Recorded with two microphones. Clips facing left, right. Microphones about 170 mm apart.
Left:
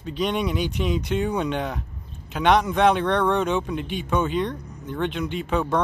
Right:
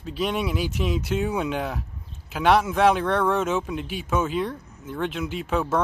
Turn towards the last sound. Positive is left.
turn(degrees=-5)  # may be behind; listen again after turning